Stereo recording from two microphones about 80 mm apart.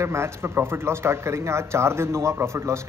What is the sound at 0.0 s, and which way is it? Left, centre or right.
Speech, right.